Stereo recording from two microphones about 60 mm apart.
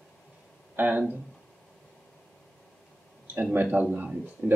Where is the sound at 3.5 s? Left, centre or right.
Right.